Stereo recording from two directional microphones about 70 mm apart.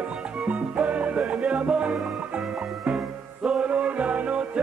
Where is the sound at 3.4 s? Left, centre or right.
Centre.